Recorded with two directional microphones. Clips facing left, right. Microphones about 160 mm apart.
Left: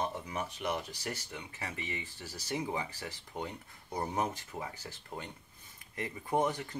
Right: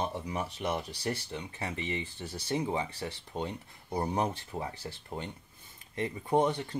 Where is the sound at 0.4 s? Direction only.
30° right (ahead or behind).